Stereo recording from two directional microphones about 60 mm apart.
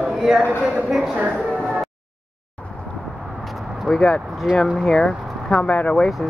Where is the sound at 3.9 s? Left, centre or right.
Centre.